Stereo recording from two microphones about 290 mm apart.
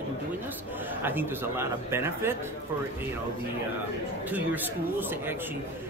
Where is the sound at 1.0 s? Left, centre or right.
Centre.